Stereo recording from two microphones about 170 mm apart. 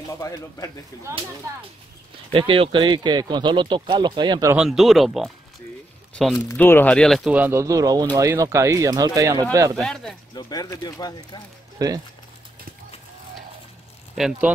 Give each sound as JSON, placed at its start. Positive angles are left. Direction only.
{"t": 0.1, "sound": "speech", "side_deg": 20}
{"t": 2.3, "sound": "speech", "side_deg": -30}
{"t": 4.6, "sound": "speech", "side_deg": 0}
{"t": 6.5, "sound": "speech", "side_deg": 10}
{"t": 7.3, "sound": "speech", "side_deg": -15}
{"t": 9.8, "sound": "speech", "side_deg": 5}
{"t": 10.3, "sound": "speech", "side_deg": 20}
{"t": 11.8, "sound": "speech", "side_deg": -20}
{"t": 14.1, "sound": "speech", "side_deg": 0}